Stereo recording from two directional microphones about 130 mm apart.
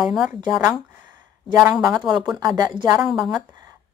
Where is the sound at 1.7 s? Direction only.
30° right (ahead or behind).